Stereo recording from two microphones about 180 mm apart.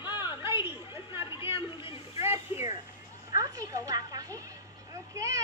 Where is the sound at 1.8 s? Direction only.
30° left (ahead or behind).